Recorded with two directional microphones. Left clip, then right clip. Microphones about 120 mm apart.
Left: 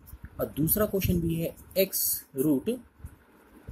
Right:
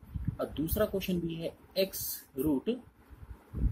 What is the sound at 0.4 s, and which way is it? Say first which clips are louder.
Speech: left 3 dB; 40° left (ahead or behind).